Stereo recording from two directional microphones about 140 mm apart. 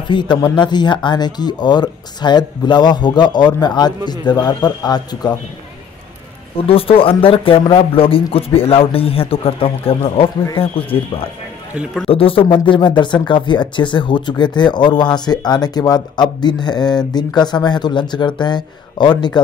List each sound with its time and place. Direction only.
0.1 s speech: 35° left (ahead or behind)
6.6 s speech: 40° left (ahead or behind)